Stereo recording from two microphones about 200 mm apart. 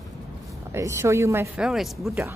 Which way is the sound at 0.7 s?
15° right (ahead or behind).